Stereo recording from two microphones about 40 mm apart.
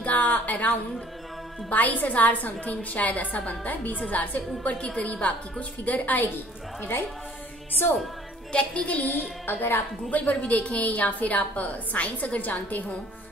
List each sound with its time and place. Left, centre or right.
0.0 s a sound: left
1.7 s a woman's voice: left
4.7 s a woman's voice: left
8.5 s a woman's voice: left
9.5 s a woman's voice: left
10.3 s a woman's voice: left